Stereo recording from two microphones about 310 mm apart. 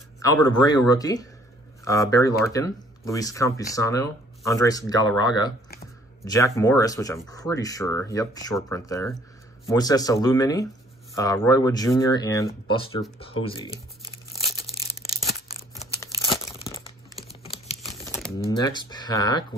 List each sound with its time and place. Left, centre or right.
0.2 s speech: centre
14.3 s crumpling: centre
16.0 s crumpling: centre
17.4 s computer keyboard: centre
18.0 s crumpling: centre
18.5 s speech: centre